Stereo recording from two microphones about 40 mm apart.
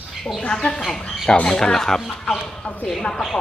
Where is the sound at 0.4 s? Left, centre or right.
Left.